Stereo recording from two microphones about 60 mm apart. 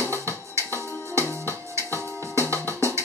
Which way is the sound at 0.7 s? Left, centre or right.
Right.